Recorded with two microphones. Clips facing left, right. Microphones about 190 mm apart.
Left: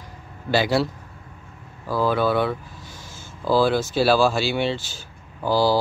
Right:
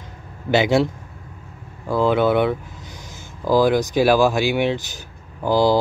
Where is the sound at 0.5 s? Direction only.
20° right (ahead or behind).